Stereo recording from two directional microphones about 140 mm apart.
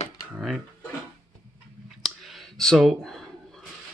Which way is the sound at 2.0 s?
Centre (ahead or behind).